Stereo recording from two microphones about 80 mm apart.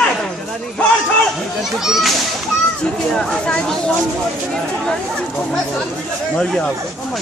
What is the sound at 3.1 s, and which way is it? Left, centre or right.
Speech, centre.